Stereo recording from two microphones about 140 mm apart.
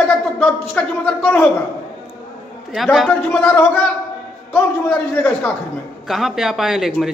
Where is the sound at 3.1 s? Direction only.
10° left (ahead or behind).